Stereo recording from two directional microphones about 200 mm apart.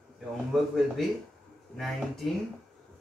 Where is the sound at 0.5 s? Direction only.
Centre (ahead or behind).